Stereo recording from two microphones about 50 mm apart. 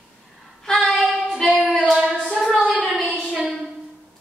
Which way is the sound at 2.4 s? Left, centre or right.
Centre.